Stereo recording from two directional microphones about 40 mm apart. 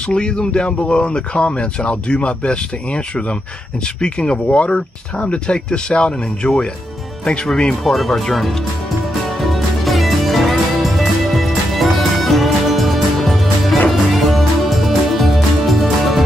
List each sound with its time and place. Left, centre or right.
0.0 s speech: left
7.8 s speech: centre
9.4 s music: centre